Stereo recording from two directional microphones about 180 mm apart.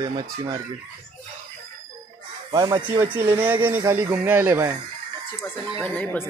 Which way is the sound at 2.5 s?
20° right (ahead or behind).